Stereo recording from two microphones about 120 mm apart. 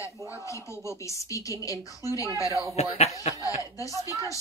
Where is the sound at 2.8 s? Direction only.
60° left (ahead or behind).